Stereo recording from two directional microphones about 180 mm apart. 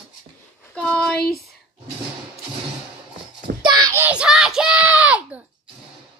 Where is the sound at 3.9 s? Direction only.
10° right (ahead or behind).